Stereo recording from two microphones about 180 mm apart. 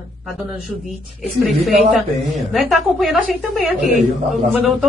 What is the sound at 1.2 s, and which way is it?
A woman's voice, centre (ahead or behind).